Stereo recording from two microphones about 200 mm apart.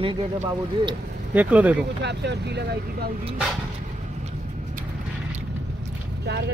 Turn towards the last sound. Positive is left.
turn(degrees=-60)  # may be behind; listen again after turning